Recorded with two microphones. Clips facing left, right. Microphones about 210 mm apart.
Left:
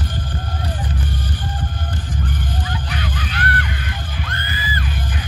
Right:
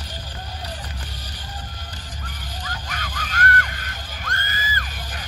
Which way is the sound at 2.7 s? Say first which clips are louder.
Left 7 dB; 45° right (ahead or behind).